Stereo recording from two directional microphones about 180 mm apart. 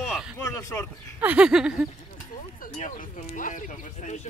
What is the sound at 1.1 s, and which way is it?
Speech, 10° right (ahead or behind).